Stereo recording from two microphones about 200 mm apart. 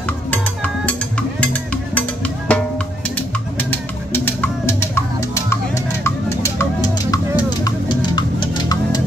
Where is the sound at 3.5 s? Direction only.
10° left (ahead or behind).